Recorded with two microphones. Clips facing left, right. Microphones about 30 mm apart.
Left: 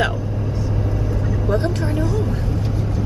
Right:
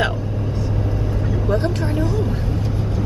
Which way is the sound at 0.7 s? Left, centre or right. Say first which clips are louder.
Even; centre.